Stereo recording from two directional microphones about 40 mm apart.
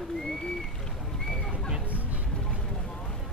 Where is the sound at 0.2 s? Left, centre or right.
Centre.